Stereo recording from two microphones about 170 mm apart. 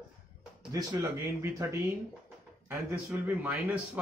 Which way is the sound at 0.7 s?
20° right (ahead or behind).